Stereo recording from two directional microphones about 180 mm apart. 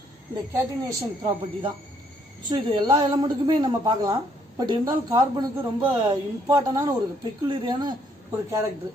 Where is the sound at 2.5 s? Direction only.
25° right (ahead or behind).